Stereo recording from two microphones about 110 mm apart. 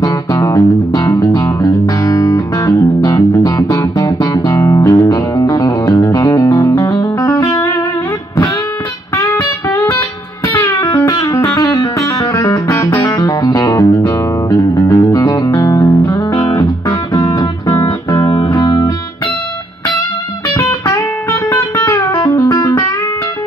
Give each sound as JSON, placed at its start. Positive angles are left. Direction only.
{"t": 0.0, "sound": "music", "side_deg": 30}
{"t": 9.1, "sound": "music", "side_deg": 30}
{"t": 12.7, "sound": "music", "side_deg": 25}
{"t": 20.9, "sound": "music", "side_deg": 25}